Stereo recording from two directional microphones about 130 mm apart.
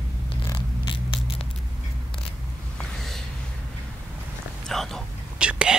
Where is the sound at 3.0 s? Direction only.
Centre (ahead or behind).